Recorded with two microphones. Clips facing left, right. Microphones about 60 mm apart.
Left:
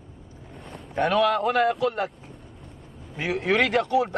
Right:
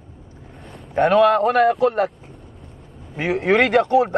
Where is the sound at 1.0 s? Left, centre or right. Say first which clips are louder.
Right 7 dB; right.